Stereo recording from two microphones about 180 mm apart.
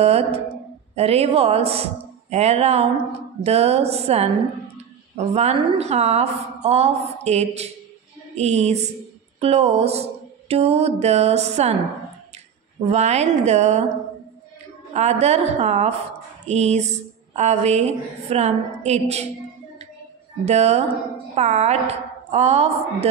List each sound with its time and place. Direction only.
0.0 s a woman's voice: 35° right (ahead or behind)
12.9 s a woman's voice: 40° right (ahead or behind)
15.0 s a woman's voice: 40° right (ahead or behind)
20.4 s a woman's voice: 35° right (ahead or behind)